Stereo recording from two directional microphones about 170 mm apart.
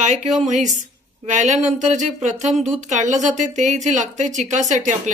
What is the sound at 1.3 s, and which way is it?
Speech, 45° right (ahead or behind).